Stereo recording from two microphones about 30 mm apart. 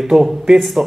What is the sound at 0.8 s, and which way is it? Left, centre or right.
Speech, right.